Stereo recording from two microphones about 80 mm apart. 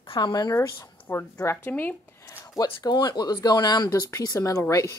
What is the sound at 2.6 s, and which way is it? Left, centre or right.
Speech, left.